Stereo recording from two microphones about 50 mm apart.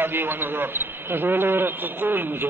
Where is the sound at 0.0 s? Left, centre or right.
Right.